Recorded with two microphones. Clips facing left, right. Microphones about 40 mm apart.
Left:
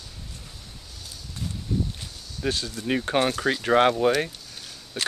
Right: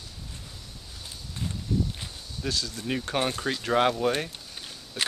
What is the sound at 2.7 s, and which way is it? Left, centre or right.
Speech, centre.